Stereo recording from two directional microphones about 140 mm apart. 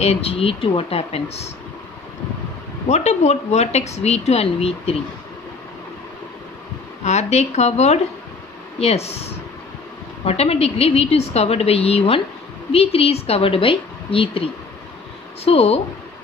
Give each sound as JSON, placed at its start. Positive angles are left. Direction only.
{"t": 0.0, "sound": "speech", "side_deg": 45}
{"t": 2.9, "sound": "speech", "side_deg": 55}
{"t": 7.1, "sound": "speech", "side_deg": 50}